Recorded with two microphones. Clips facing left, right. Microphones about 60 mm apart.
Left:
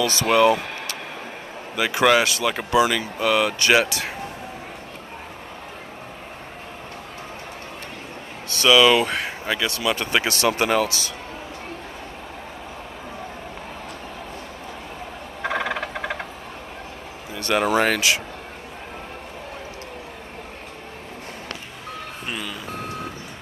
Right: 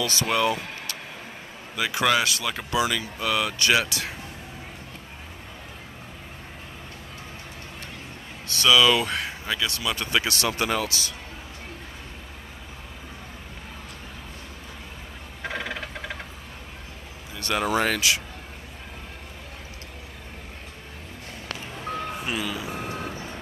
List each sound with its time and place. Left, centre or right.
0.0 s speech: left
1.8 s speech: left
8.6 s speech: left
15.4 s a sound: left
17.5 s speech: left
21.9 s reversing beeps: centre